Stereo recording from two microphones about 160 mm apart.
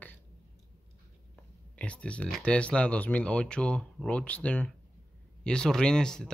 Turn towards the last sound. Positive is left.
turn(degrees=5)  # may be behind; listen again after turning